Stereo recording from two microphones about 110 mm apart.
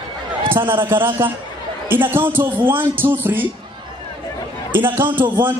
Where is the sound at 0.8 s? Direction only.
20° right (ahead or behind).